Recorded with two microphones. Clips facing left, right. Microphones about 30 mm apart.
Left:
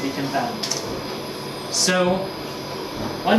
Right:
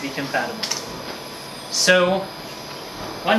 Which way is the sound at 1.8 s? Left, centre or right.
Centre.